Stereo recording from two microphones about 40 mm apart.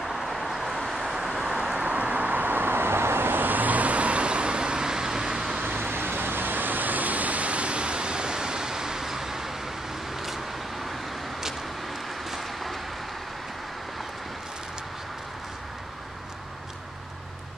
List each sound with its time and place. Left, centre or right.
0.0 s vehicle: centre
1.4 s vehicle: centre
1.8 s vehicle: right; by 5.6 s centre
5.8 s vehicle: right; by 10.4 s centre
12.3 s vehicle: centre